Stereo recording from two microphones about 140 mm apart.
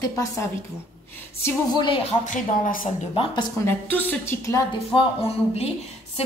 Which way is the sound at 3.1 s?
40° left (ahead or behind).